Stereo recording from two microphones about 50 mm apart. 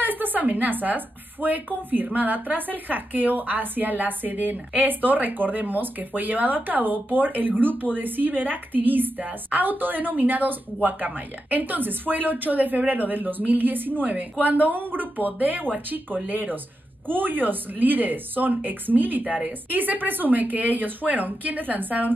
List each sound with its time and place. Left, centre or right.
0.0 s a woman's voice: right